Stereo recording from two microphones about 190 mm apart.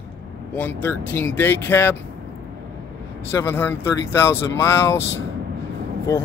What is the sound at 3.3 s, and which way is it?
Speech, 15° left (ahead or behind).